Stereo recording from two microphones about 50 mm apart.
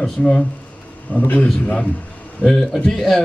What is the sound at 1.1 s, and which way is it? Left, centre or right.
Speech, left.